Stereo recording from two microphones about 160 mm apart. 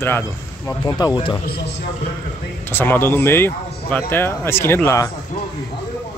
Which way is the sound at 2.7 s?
15° left (ahead or behind).